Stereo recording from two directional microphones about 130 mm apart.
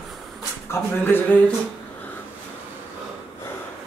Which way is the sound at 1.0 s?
15° left (ahead or behind).